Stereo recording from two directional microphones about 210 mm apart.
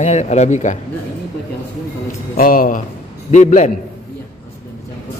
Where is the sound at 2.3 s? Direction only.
40° left (ahead or behind).